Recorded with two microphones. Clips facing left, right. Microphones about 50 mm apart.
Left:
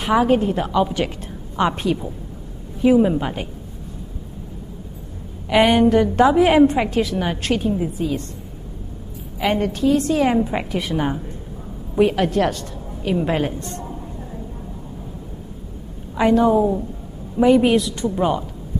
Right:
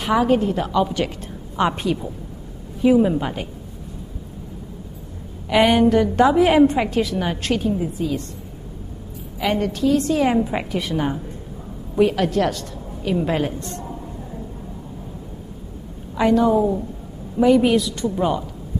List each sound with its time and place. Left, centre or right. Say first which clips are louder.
0.0 s a woman's voice: left 1 dB; centre
1.6 s a woman's voice: left 1 dB; centre
5.5 s a woman's voice: left 1 dB; centre
7.6 s a woman's voice: left 1 dB; centre
9.4 s a woman's voice: left 1 dB; left
9.9 s a woman's voice: even; centre
10.8 s a woman's voice: left 1 dB; centre
16.2 s a woman's voice: left 1 dB; centre